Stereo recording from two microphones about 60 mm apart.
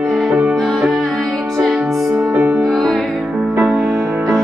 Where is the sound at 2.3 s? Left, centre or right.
Centre.